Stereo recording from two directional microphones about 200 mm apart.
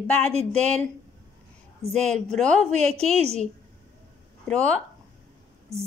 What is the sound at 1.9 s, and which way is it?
Speech, 5° left (ahead or behind).